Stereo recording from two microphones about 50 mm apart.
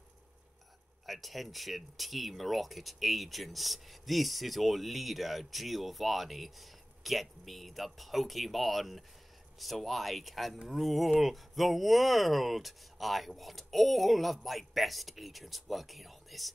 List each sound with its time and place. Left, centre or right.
1.0 s speech: centre